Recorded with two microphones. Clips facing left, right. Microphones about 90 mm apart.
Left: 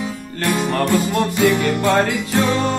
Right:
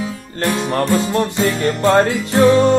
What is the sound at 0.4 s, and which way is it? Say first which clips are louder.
Music: right 1 dB; 25° right (ahead or behind).